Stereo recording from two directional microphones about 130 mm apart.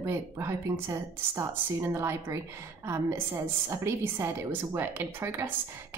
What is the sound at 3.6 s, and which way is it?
Speech, 20° right (ahead or behind).